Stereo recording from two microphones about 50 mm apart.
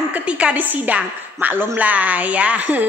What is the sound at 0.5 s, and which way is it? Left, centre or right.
A woman's voice, right.